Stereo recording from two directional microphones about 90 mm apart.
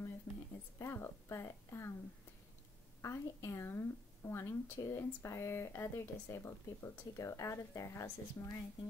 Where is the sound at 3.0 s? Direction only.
30° left (ahead or behind).